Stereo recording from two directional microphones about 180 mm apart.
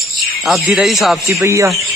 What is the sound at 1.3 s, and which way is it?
Speech, 15° right (ahead or behind).